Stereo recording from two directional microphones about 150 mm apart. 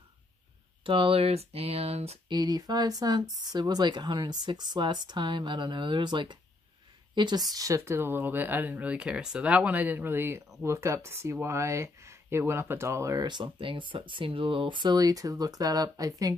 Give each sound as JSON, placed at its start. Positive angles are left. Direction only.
{"t": 0.8, "sound": "speech", "side_deg": -35}
{"t": 2.2, "sound": "speech", "side_deg": -25}